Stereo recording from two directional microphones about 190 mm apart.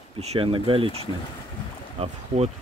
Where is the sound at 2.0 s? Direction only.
35° right (ahead or behind).